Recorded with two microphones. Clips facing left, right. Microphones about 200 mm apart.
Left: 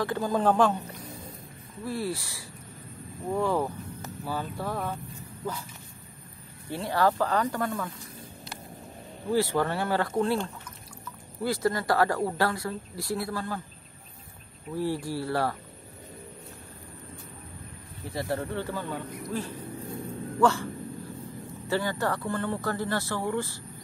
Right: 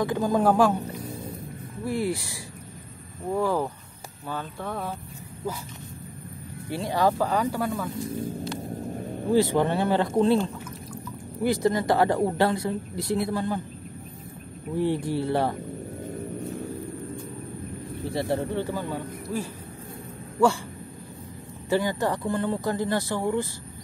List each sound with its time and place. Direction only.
0.0 s speech: 15° right (ahead or behind)
1.9 s speech: 15° right (ahead or behind)
3.3 s speech: centre (ahead or behind)
6.7 s speech: 15° right (ahead or behind)
9.3 s speech: 20° right (ahead or behind)
11.4 s speech: 20° right (ahead or behind)
14.8 s speech: 20° right (ahead or behind)
18.1 s speech: 25° right (ahead or behind)
18.5 s speech: 15° right (ahead or behind)
21.6 s speech: 15° right (ahead or behind)